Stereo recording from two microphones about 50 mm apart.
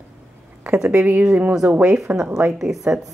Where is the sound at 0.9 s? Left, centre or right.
Right.